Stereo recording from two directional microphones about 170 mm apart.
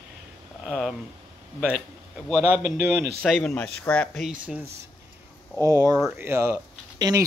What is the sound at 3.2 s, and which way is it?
Speech, 5° left (ahead or behind).